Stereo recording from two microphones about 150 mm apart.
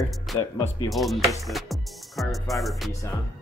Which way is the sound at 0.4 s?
25° left (ahead or behind).